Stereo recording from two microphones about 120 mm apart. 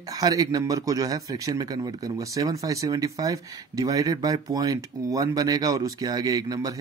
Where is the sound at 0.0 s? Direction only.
30° right (ahead or behind).